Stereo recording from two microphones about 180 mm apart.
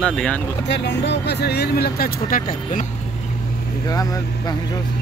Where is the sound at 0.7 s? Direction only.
75° left (ahead or behind); by 2.8 s 50° left (ahead or behind).